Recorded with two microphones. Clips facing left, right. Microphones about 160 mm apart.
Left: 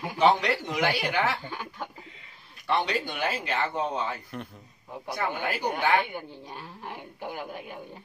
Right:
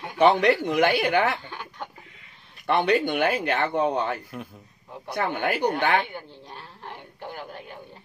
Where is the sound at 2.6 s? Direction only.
55° right (ahead or behind).